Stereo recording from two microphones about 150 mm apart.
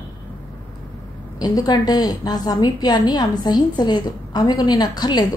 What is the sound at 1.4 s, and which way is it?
A woman's voice, 25° left (ahead or behind).